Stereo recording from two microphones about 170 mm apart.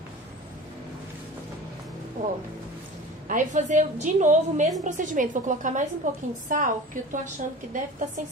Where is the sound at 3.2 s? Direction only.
50° right (ahead or behind).